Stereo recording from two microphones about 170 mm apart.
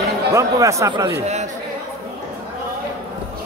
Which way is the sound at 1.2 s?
40° right (ahead or behind).